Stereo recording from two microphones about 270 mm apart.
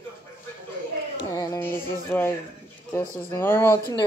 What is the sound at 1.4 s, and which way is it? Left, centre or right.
Music, centre.